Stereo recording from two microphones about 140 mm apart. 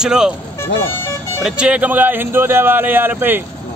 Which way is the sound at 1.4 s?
5° right (ahead or behind).